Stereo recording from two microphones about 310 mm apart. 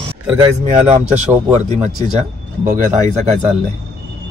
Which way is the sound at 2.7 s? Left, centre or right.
Right.